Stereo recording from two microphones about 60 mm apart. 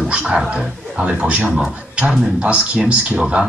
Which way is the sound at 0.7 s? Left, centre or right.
Centre.